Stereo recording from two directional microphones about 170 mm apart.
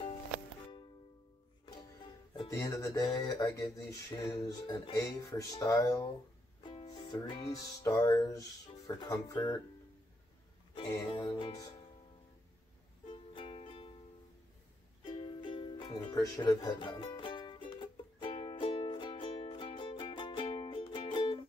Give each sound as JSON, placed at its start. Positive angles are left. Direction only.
{"t": 2.3, "sound": "speech", "side_deg": 20}
{"t": 6.6, "sound": "music", "side_deg": 30}
{"t": 11.1, "sound": "music", "side_deg": 30}
{"t": 13.1, "sound": "music", "side_deg": 30}
{"t": 15.0, "sound": "music", "side_deg": 30}